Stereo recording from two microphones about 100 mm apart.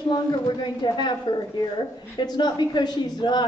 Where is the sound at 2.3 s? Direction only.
45° left (ahead or behind).